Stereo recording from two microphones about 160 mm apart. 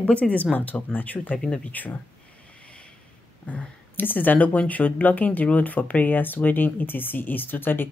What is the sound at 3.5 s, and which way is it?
Speech, 10° left (ahead or behind).